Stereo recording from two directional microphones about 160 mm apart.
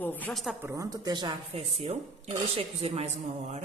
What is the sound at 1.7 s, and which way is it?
A woman's voice, 40° right (ahead or behind).